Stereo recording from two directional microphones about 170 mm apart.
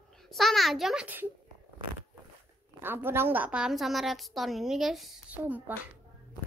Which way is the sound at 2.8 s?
10° right (ahead or behind).